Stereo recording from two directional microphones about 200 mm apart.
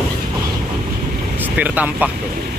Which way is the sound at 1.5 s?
5° right (ahead or behind).